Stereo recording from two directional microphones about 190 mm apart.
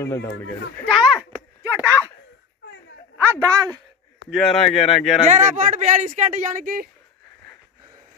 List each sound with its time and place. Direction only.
0.0 s speech: 15° left (ahead or behind)
0.8 s a sound: centre (ahead or behind)
3.2 s a woman's voice: 15° right (ahead or behind)
4.6 s speech: centre (ahead or behind)
5.3 s speech: 40° right (ahead or behind)